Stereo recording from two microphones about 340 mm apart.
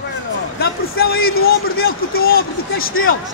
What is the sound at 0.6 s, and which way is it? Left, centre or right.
Speech, left.